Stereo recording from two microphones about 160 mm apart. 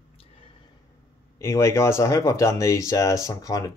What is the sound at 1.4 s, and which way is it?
Speech, 15° left (ahead or behind).